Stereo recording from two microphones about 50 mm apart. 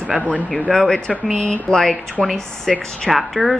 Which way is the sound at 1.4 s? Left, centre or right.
Left.